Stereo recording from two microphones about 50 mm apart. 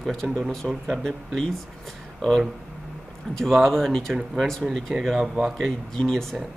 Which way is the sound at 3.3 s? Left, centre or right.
Centre.